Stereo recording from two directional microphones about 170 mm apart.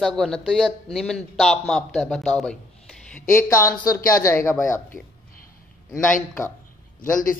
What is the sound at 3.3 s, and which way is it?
Speech, 15° left (ahead or behind).